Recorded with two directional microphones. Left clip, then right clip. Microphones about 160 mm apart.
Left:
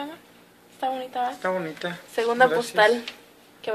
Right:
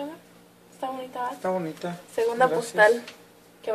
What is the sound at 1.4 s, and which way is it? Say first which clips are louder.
Speech: left 1 dB; 20° right (ahead or behind).